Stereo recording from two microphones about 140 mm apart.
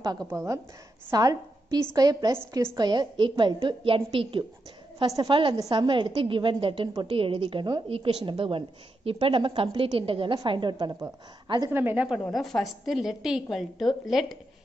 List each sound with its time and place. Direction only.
0.0 s a woman's voice: 25° right (ahead or behind)
2.9 s a woman's voice: 35° right (ahead or behind)
11.7 s speech: 15° right (ahead or behind)
12.3 s a woman's voice: centre (ahead or behind)